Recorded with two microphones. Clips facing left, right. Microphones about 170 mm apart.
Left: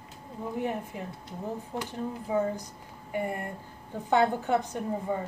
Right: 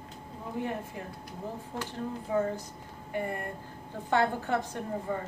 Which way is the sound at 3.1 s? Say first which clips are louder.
Left 2 dB; 15° left (ahead or behind).